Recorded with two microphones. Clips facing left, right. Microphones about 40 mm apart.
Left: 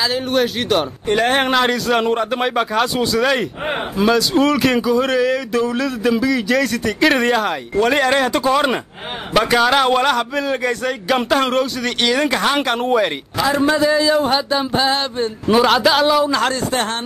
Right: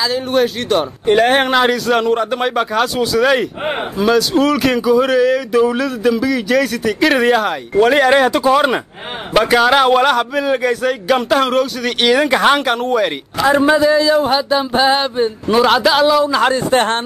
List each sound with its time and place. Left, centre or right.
0.0 s speech: centre
12.8 s speech: centre
14.7 s a sound: centre
15.4 s speech: centre
16.7 s speech: right